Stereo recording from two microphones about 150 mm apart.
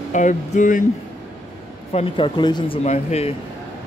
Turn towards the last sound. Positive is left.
turn(degrees=45)  # may be behind; listen again after turning